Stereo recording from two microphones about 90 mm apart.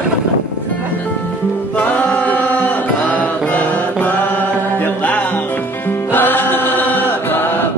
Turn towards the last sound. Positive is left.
turn(degrees=20)  # may be behind; listen again after turning